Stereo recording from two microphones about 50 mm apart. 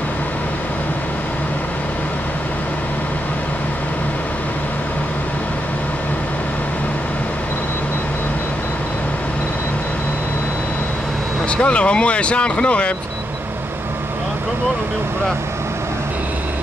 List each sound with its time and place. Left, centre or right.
11.5 s speech: left